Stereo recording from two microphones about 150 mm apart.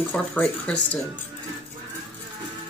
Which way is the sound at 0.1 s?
5° left (ahead or behind).